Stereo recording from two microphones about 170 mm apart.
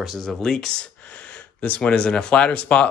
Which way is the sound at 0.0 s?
Centre (ahead or behind).